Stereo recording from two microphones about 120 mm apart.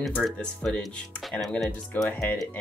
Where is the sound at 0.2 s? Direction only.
5° left (ahead or behind).